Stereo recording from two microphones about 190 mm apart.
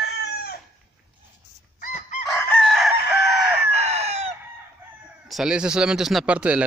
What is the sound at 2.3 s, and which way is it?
Chicken, 5° left (ahead or behind).